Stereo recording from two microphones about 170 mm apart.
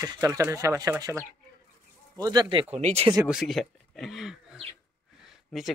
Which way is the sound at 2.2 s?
25° right (ahead or behind).